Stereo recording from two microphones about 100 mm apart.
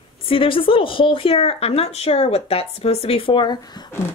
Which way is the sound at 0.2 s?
65° left (ahead or behind).